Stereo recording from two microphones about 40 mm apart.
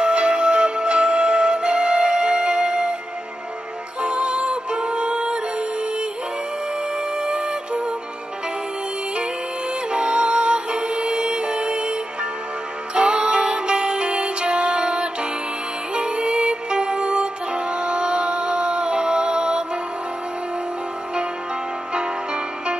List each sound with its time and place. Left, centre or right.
0.0 s music: right
4.0 s music: right
7.2 s music: right
9.8 s music: right
21.9 s music: right